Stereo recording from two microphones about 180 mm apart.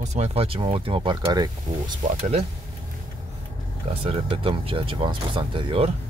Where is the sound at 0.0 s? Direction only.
35° right (ahead or behind).